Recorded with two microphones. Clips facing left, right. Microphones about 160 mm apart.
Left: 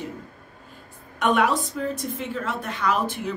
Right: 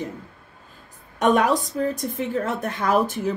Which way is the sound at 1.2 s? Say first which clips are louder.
Right 3 dB; 40° right (ahead or behind).